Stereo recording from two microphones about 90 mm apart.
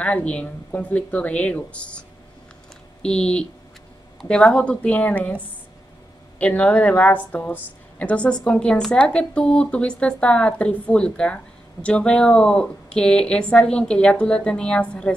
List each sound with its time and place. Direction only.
0.0 s speech: 15° left (ahead or behind)
6.4 s speech: 15° left (ahead or behind)